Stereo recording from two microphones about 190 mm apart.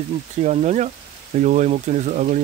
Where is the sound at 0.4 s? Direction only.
35° right (ahead or behind).